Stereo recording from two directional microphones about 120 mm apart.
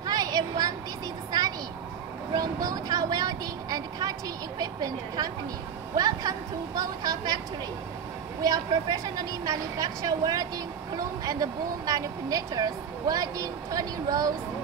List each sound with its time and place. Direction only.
0.0 s a sound: 35° right (ahead or behind)
2.3 s vehicle: 30° right (ahead or behind)
4.6 s speech: 35° right (ahead or behind)
8.4 s speech: 30° right (ahead or behind)